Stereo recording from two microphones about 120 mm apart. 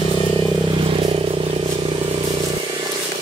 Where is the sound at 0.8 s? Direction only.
50° right (ahead or behind).